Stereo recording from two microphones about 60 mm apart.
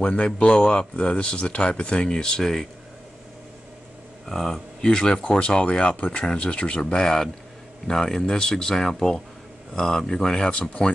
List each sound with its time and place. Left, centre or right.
0.0 s speech: centre
4.3 s speech: centre